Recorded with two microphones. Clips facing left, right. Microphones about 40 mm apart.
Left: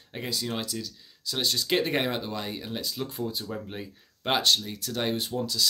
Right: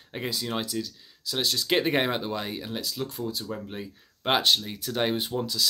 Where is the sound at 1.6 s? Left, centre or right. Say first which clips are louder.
Right 3 dB; centre.